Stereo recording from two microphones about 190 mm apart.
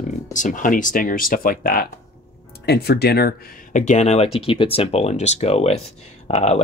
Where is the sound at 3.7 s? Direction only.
40° left (ahead or behind).